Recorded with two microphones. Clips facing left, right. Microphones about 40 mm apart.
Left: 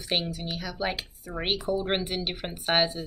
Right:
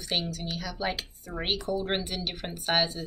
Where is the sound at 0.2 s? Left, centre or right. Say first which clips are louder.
Left 1 dB; centre.